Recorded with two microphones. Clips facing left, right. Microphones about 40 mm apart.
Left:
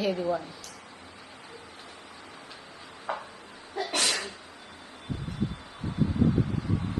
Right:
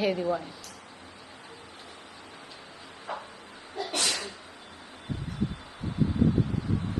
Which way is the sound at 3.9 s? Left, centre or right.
Left.